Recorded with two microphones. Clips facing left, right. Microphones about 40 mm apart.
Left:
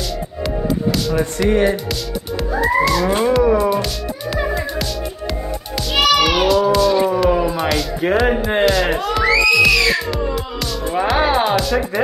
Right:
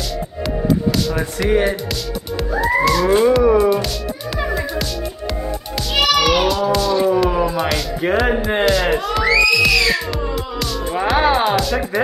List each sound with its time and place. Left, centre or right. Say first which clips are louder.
0.7 s speech: right 2 dB; centre
2.5 s music: even; centre
5.9 s cat: left 1 dB; centre